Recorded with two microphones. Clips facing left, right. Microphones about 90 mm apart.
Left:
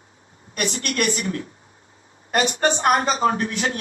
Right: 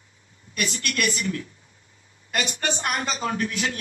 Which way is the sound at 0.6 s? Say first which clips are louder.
Left 3 dB; 40° left (ahead or behind).